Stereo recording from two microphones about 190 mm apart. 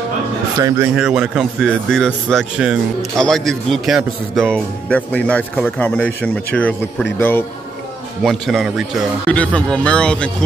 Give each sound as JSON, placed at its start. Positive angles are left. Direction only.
{"t": 0.6, "sound": "speech", "side_deg": -20}
{"t": 0.9, "sound": "a man's voice", "side_deg": -5}